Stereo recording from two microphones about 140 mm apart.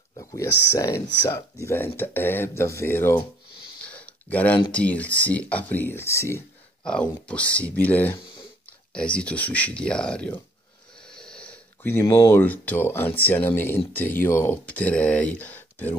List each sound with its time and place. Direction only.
0.2 s speech: 25° left (ahead or behind)
3.9 s a sound: 10° left (ahead or behind)
4.7 s speech: 10° left (ahead or behind)
6.8 s speech: 5° left (ahead or behind)